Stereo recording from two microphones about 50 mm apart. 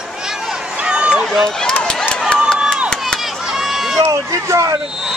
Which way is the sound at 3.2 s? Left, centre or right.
Centre.